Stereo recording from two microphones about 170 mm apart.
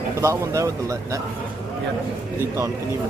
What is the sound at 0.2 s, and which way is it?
Speech, 15° right (ahead or behind).